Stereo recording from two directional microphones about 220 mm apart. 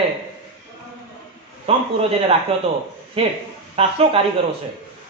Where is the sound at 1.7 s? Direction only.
25° right (ahead or behind).